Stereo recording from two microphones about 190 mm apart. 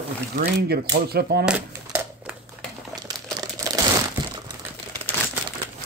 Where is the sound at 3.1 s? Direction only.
20° right (ahead or behind).